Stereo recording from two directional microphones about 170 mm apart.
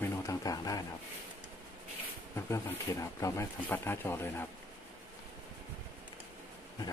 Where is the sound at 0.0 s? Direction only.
20° left (ahead or behind).